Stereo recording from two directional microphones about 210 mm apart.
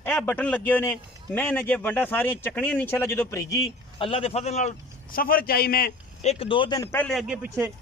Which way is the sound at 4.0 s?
25° left (ahead or behind).